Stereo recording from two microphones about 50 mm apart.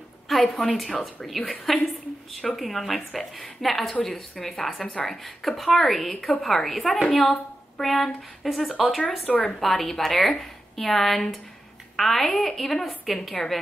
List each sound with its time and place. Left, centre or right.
0.3 s a woman's voice: centre
9.2 s a woman's voice: left
9.6 s a woman's voice: centre